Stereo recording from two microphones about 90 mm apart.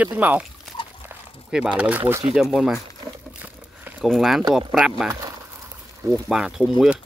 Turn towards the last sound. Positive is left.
turn(degrees=-5)  # may be behind; listen again after turning